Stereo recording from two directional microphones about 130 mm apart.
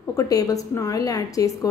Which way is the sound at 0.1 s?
25° left (ahead or behind).